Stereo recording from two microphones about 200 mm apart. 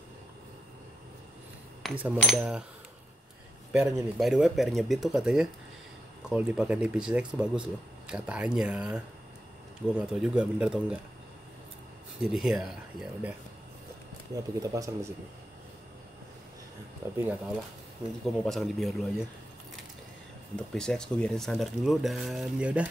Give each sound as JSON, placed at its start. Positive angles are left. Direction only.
{"t": 1.8, "sound": "speech", "side_deg": -5}
{"t": 3.7, "sound": "speech", "side_deg": -15}
{"t": 4.2, "sound": "speech", "side_deg": 0}
{"t": 12.2, "sound": "speech", "side_deg": 0}
{"t": 14.3, "sound": "speech", "side_deg": -15}
{"t": 18.2, "sound": "speech", "side_deg": 0}
{"t": 20.5, "sound": "speech", "side_deg": 5}